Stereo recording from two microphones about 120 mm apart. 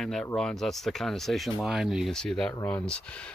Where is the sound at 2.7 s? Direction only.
10° left (ahead or behind).